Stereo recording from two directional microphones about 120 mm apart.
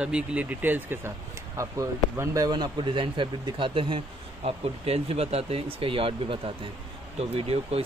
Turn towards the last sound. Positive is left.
turn(degrees=-55)  # may be behind; listen again after turning